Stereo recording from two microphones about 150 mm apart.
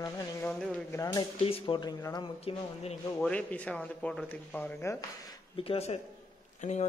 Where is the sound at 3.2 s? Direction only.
10° left (ahead or behind); by 6.0 s 40° left (ahead or behind).